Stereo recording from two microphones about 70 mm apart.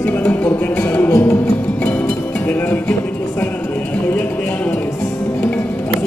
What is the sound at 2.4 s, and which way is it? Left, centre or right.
Music, left.